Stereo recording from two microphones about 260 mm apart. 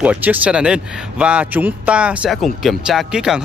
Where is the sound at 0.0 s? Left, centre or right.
Centre.